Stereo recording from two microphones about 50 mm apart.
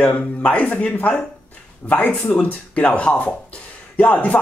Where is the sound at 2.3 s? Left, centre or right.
Left.